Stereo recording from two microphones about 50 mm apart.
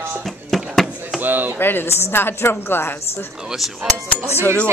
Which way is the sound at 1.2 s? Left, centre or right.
Right.